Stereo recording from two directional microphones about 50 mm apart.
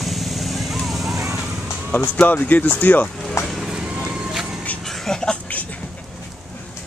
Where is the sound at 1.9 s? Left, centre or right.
Left.